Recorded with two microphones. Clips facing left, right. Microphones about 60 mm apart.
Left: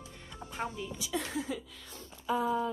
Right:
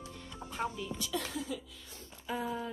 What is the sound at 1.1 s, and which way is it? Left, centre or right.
Speech, left.